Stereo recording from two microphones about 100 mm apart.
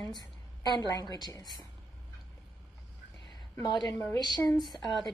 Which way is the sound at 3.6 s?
45° left (ahead or behind).